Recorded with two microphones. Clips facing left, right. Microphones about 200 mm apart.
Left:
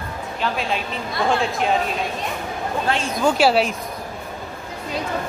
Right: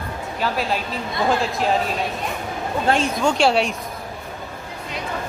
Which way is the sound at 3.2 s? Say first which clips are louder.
Left 1 dB; 5° left (ahead or behind).